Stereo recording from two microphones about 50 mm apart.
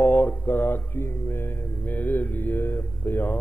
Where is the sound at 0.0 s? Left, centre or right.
Left.